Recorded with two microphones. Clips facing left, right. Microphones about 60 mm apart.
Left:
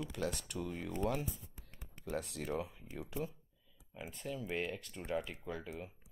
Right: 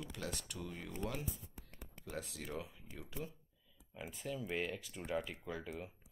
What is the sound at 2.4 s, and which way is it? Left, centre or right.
Speech, left.